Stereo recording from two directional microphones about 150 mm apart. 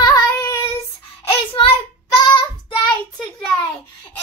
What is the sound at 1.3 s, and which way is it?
Child singing, 35° left (ahead or behind).